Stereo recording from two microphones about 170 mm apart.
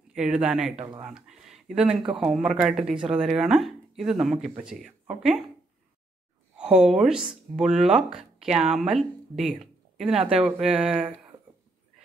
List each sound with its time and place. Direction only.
0.1 s speech: 5° right (ahead or behind)
0.7 s speech: 30° right (ahead or behind)
1.0 s speech: 5° right (ahead or behind)
6.5 s speech: 5° right (ahead or behind)